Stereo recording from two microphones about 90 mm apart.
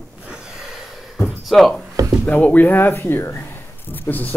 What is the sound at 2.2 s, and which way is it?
Speech, 20° left (ahead or behind).